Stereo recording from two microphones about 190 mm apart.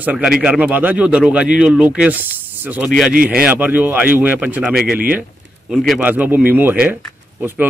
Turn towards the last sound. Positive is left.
turn(degrees=-10)  # may be behind; listen again after turning